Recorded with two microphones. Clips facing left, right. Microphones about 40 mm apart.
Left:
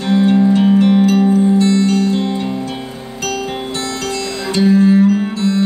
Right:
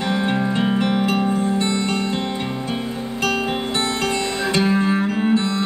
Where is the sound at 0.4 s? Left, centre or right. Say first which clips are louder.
Left 8 dB; right.